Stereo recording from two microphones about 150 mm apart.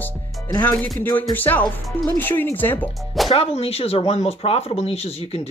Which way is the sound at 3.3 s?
40° left (ahead or behind).